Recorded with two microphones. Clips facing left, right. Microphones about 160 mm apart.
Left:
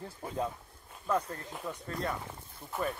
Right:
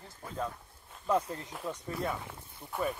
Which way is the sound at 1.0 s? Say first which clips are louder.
Right 2 dB; 15° right (ahead or behind).